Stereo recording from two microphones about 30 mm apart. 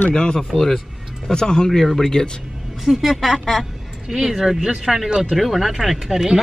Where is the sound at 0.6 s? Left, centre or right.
Centre.